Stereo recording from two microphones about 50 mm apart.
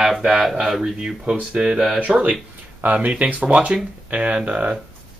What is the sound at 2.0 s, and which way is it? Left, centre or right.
Speech, right.